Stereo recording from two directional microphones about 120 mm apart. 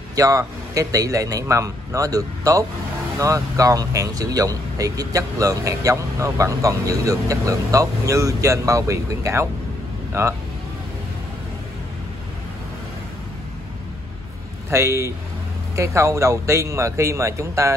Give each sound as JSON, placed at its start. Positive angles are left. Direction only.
{"t": 0.1, "sound": "speech", "side_deg": -30}
{"t": 14.7, "sound": "speech", "side_deg": -25}